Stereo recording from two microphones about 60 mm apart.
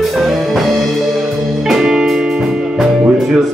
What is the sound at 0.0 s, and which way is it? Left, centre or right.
Music, centre.